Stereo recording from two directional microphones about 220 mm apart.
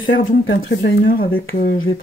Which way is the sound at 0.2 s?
40° left (ahead or behind).